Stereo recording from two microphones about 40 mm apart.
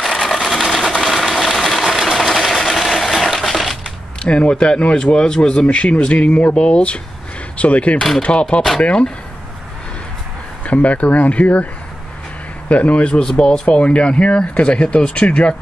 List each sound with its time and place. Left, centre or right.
0.0 s a sound: centre
1.0 s sewing machine: centre
4.2 s speech: left
10.6 s speech: left
12.6 s speech: left
13.2 s speech: centre
13.7 s speech: left